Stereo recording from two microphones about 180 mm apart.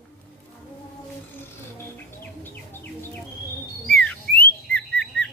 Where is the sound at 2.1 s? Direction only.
10° left (ahead or behind).